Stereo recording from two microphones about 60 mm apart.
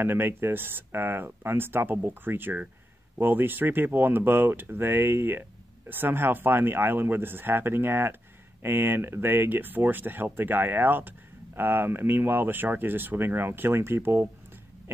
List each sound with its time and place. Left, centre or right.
0.0 s speech: right